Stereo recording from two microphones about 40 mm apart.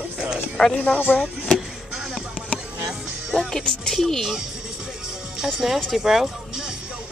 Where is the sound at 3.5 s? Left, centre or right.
Centre.